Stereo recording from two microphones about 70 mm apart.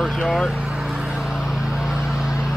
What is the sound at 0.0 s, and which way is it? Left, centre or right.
Speech, centre.